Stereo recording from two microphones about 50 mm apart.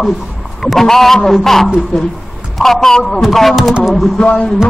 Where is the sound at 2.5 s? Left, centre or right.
Centre.